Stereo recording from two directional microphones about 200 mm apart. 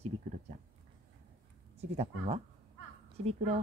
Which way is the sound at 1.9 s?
30° right (ahead or behind).